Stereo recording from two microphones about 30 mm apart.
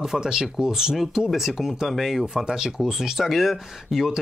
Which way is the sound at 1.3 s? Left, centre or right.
Centre.